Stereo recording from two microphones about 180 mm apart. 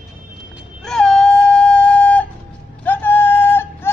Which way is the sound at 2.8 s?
10° left (ahead or behind).